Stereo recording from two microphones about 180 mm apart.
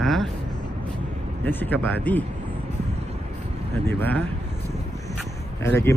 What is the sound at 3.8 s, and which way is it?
Speech, 10° left (ahead or behind).